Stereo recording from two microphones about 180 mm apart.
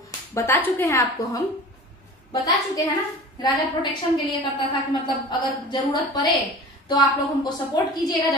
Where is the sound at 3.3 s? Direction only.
20° left (ahead or behind).